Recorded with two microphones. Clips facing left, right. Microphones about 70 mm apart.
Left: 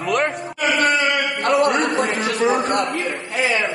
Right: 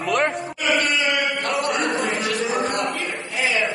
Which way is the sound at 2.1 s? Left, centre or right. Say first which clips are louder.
Left 4 dB; left.